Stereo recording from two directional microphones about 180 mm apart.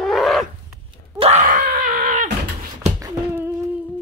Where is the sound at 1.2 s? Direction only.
40° right (ahead or behind).